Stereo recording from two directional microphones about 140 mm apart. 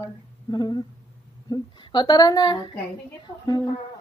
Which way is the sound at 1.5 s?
35° left (ahead or behind).